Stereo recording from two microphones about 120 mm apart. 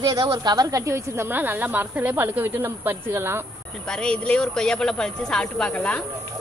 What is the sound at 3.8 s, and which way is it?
Speech, 5° left (ahead or behind).